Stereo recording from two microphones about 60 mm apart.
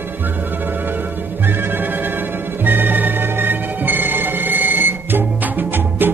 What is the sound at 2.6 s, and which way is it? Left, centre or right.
Music, right.